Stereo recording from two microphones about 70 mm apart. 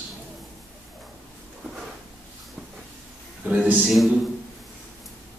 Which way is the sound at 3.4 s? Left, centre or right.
Centre.